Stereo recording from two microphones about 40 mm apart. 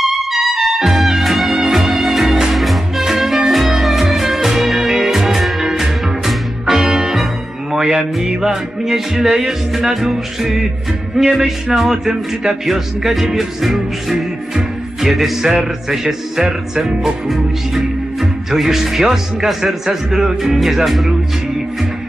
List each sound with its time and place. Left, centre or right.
0.3 s music: centre